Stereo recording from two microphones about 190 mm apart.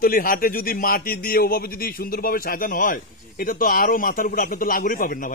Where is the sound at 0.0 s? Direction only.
50° left (ahead or behind).